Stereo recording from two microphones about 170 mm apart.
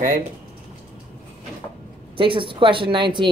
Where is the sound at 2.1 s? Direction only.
30° right (ahead or behind).